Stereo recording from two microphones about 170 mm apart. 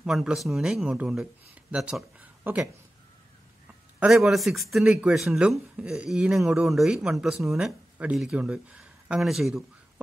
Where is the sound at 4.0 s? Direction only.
Centre (ahead or behind).